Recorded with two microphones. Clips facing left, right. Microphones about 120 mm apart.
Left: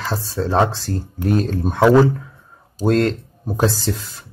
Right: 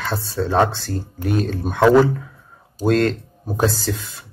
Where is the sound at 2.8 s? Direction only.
30° left (ahead or behind).